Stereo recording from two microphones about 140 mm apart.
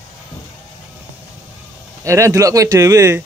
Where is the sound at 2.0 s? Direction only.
20° right (ahead or behind).